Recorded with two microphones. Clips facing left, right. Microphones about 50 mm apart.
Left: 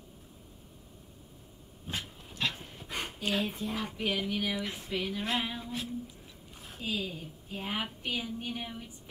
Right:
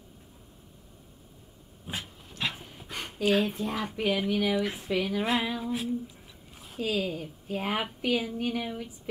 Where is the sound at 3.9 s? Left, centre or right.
Right.